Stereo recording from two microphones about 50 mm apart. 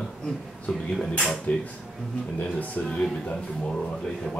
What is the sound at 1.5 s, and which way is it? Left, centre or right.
Speech, left.